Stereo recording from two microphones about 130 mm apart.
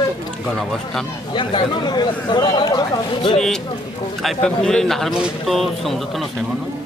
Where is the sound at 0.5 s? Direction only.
5° left (ahead or behind).